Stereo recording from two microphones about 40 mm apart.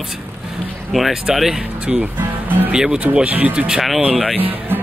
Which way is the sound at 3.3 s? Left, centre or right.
Right.